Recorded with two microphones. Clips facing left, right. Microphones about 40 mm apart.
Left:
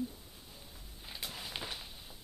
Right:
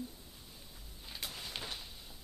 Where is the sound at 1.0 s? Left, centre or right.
Centre.